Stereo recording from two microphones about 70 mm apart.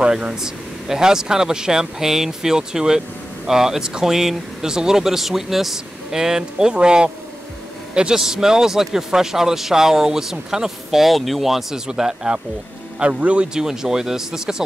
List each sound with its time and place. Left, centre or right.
0.0 s a man's voice: centre